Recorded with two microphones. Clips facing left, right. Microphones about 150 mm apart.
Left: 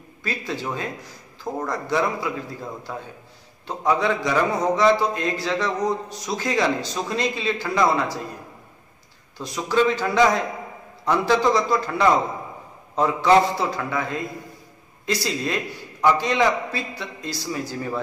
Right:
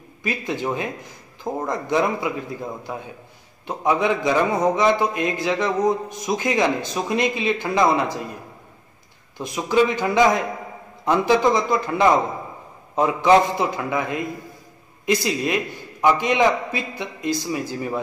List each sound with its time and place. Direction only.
0.2 s a man's voice: 15° right (ahead or behind)
3.6 s a man's voice: 15° right (ahead or behind)
9.5 s speech: 15° right (ahead or behind)